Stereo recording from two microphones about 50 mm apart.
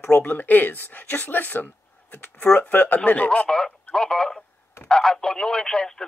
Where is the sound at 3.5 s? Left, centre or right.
Centre.